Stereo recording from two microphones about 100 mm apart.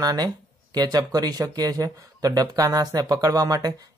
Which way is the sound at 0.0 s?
40° right (ahead or behind).